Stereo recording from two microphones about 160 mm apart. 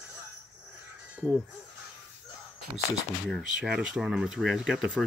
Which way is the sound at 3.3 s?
Centre (ahead or behind).